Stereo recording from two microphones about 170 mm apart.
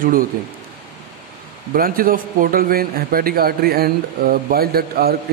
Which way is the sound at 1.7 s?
55° right (ahead or behind).